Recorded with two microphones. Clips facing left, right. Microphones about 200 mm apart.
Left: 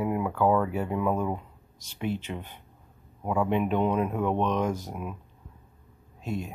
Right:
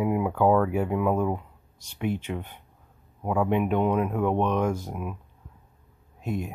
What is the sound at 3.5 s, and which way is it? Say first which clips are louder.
Speech: right 2 dB; 10° right (ahead or behind).